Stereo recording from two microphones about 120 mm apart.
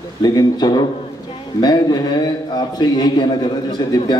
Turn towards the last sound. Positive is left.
turn(degrees=40)  # may be behind; listen again after turning